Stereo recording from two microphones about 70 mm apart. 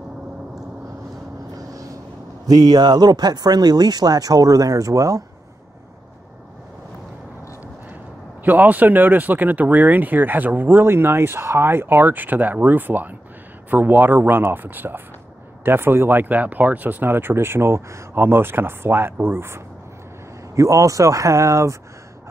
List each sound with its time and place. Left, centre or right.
2.4 s speech: right
8.5 s speech: right
20.5 s speech: right